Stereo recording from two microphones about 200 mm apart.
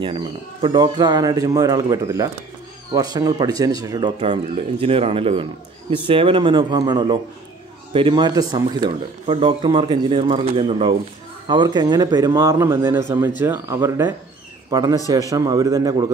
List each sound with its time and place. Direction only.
0.0 s speech: 25° right (ahead or behind)